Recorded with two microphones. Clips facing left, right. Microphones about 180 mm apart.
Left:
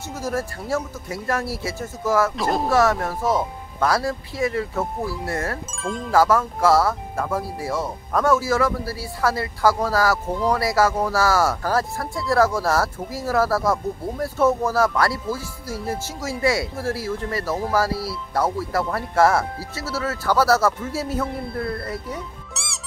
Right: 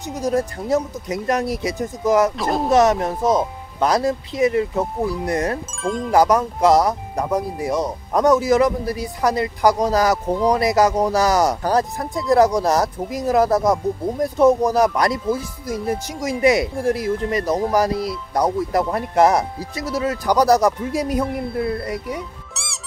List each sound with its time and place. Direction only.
0.1 s speech: 20° right (ahead or behind)
2.3 s speech: centre (ahead or behind)
2.7 s speech: 20° right (ahead or behind)
5.7 s speech: centre (ahead or behind)
6.1 s speech: 20° right (ahead or behind)